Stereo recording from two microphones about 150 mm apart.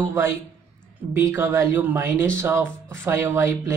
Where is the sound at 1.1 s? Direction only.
15° right (ahead or behind).